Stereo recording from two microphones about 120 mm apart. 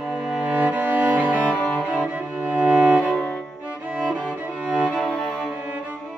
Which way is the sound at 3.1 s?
5° left (ahead or behind).